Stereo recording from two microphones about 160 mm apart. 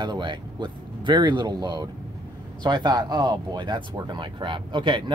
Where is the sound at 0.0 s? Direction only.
30° right (ahead or behind).